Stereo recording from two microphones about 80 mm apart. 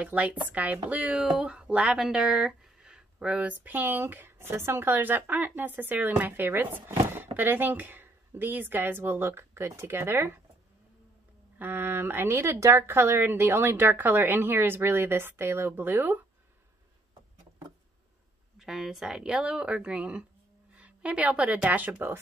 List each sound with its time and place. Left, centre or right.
0.0 s speech: centre
11.5 s speech: right
18.6 s speech: centre; by 22.2 s right